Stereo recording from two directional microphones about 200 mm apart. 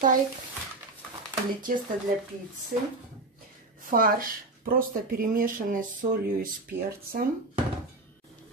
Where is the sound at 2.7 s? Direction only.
45° right (ahead or behind).